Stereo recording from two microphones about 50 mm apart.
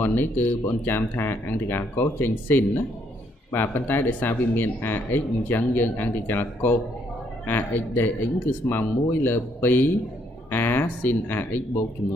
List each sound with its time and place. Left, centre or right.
0.0 s speech: left